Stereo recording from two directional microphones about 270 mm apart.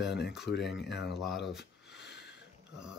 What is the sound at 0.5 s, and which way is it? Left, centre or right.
Speech, left.